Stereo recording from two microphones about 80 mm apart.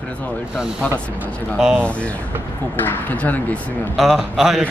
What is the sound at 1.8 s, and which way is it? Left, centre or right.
Speech, centre.